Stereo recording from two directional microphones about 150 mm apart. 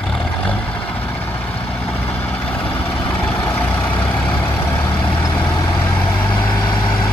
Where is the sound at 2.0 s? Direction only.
10° left (ahead or behind).